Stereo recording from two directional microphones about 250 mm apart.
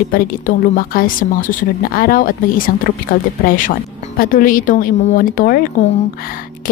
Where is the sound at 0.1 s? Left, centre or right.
Left.